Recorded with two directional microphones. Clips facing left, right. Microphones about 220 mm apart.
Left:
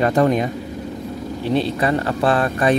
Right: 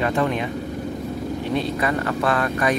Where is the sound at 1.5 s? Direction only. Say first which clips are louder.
Left 5 dB; 30° left (ahead or behind).